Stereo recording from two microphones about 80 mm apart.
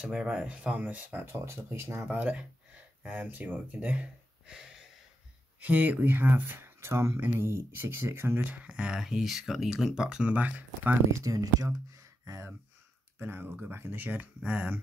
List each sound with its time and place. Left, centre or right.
0.0 s speech: centre
1.3 s speech: right
2.0 s speech: centre
5.6 s speech: right
10.3 s speech: centre
11.1 s speech: right
13.2 s speech: right